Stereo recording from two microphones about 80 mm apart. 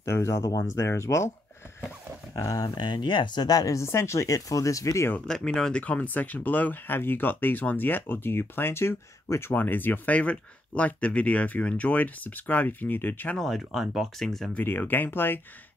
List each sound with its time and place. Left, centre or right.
0.0 s speech: left
2.3 s speech: left
2.7 s speech: left
3.7 s speech: left
5.3 s speech: centre; by 13.4 s left
13.4 s speech: centre
14.5 s speech: left